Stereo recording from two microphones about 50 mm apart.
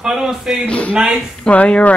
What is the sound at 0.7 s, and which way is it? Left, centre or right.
Speech, left.